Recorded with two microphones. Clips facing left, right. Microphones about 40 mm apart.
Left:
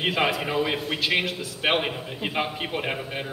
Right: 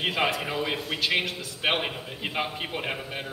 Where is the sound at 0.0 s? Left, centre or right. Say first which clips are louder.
Left 2 dB; centre.